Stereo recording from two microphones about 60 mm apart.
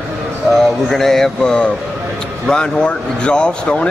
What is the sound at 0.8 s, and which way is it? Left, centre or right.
Speech, centre.